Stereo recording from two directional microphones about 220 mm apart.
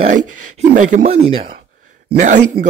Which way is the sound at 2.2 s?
35° right (ahead or behind).